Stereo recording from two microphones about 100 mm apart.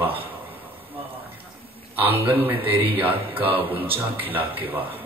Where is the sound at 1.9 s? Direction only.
20° right (ahead or behind).